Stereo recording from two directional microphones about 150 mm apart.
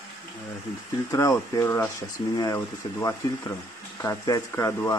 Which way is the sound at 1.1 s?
20° left (ahead or behind).